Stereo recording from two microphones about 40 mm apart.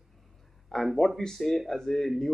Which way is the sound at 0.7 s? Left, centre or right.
Centre.